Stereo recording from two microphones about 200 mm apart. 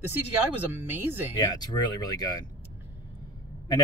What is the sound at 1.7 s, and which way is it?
Speech, 20° left (ahead or behind).